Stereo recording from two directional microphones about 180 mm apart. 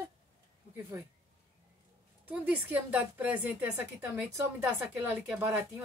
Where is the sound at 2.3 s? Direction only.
10° right (ahead or behind).